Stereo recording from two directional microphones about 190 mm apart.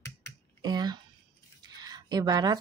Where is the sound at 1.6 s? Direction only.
20° right (ahead or behind).